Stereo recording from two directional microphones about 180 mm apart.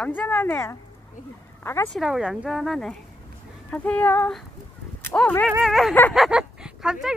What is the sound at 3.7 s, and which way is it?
Child singing, 10° left (ahead or behind).